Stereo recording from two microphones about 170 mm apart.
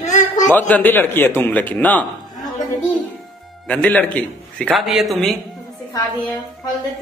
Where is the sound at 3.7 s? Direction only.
10° left (ahead or behind).